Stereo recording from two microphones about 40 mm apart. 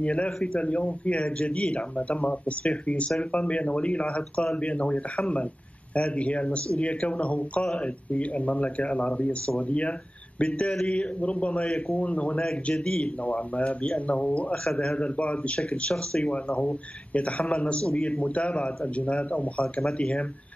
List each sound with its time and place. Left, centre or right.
0.0 s speech: left
12.8 s speech: left
13.2 s speech: left
14.5 s speech: centre
15.0 s speech: left
19.6 s speech: left